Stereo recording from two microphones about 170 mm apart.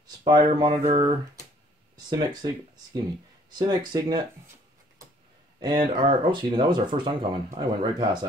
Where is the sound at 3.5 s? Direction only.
25° right (ahead or behind).